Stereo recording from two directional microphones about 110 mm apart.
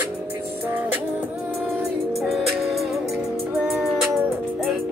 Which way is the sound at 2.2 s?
Centre (ahead or behind).